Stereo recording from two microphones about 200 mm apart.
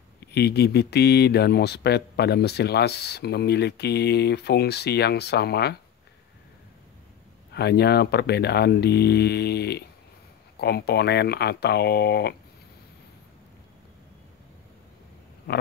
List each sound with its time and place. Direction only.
0.2 s speech: 55° left (ahead or behind)
7.5 s speech: 55° left (ahead or behind)
15.5 s a sound: 60° left (ahead or behind)